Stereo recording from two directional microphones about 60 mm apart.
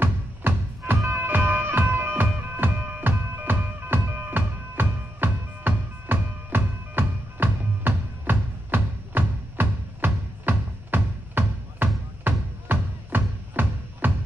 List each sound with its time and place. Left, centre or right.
0.0 s music: right